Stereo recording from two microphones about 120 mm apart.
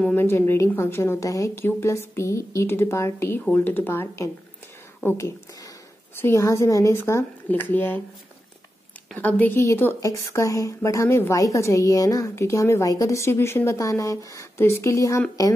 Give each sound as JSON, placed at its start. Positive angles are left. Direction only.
{"t": 0.0, "sound": "a woman's voice", "side_deg": 15}
{"t": 9.1, "sound": "a woman's voice", "side_deg": 15}